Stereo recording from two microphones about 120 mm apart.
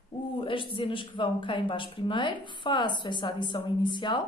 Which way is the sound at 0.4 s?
45° left (ahead or behind).